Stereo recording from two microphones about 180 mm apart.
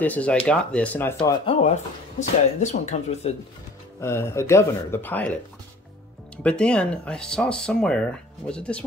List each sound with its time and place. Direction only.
0.0 s speech: 10° left (ahead or behind)
1.4 s speech: 30° left (ahead or behind)
4.0 s speech: 15° left (ahead or behind)